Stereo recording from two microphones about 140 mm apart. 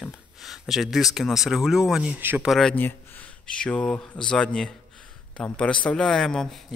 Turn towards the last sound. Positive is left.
turn(degrees=5)  # may be behind; listen again after turning